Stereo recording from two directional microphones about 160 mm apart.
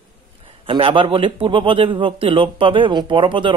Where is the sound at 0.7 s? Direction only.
35° right (ahead or behind).